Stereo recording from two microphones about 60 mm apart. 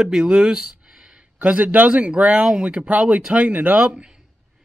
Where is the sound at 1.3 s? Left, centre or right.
Right.